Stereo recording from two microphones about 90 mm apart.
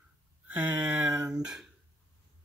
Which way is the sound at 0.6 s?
25° right (ahead or behind).